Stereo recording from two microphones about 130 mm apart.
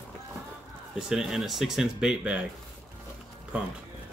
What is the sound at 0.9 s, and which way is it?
Speech, 5° right (ahead or behind).